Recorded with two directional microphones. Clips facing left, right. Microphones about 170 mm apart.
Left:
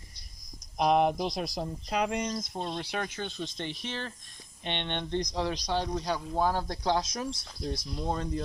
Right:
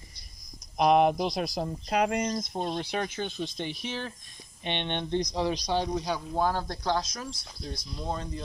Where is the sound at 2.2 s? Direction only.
35° right (ahead or behind); by 7.2 s 15° left (ahead or behind).